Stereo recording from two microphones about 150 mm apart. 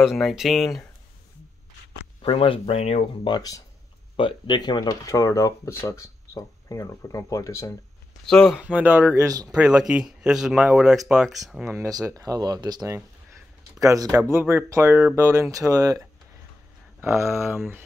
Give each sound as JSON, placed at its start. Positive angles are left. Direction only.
{"t": 0.1, "sound": "speech", "side_deg": 0}
{"t": 2.2, "sound": "speech", "side_deg": 35}
{"t": 3.3, "sound": "speech", "side_deg": 25}
{"t": 8.3, "sound": "speech", "side_deg": 5}
{"t": 8.5, "sound": "speech", "side_deg": -10}
{"t": 9.1, "sound": "speech", "side_deg": -20}
{"t": 9.5, "sound": "speech", "side_deg": -5}
{"t": 11.6, "sound": "speech", "side_deg": -20}